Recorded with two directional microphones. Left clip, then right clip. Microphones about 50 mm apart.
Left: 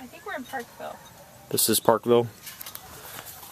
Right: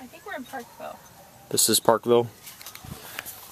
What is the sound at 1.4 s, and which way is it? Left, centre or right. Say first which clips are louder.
Speech: right 1 dB; right.